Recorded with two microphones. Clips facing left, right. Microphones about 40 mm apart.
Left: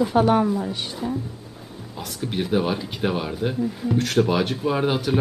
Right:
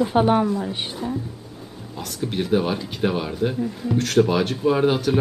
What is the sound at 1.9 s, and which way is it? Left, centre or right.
Speech, centre.